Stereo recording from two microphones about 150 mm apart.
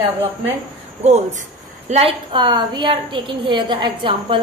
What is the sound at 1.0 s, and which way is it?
A woman's voice, 50° right (ahead or behind).